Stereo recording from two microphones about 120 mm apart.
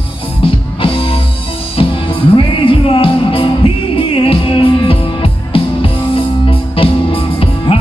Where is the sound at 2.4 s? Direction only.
45° left (ahead or behind).